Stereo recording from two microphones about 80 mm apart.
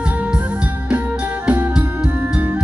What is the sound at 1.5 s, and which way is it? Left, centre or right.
Music, centre.